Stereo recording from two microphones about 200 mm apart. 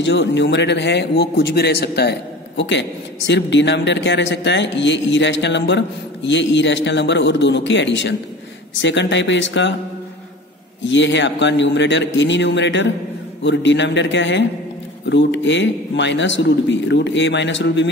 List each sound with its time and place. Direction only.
0.0 s a man's voice: 65° left (ahead or behind)
10.9 s a man's voice: 65° left (ahead or behind)